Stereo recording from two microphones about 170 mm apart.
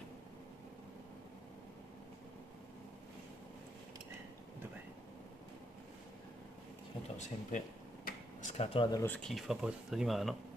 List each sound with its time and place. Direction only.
7.2 s a sound: 45° left (ahead or behind)
8.9 s speech: 15° left (ahead or behind)
9.2 s speech: centre (ahead or behind)